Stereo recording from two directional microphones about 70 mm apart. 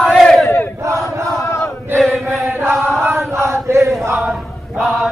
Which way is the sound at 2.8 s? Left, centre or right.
Right.